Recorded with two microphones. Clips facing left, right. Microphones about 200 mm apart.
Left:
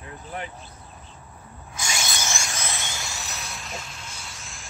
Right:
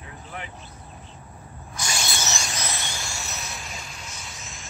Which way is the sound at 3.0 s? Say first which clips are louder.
Right 1 dB; centre (ahead or behind).